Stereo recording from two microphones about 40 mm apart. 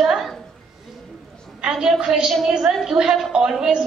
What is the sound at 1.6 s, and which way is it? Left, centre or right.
A woman's voice, right.